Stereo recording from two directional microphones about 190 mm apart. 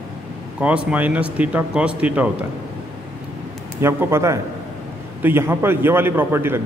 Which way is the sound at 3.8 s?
15° right (ahead or behind).